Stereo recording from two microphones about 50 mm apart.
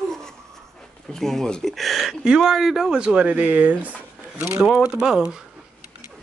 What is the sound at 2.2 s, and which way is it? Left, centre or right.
Speech, centre.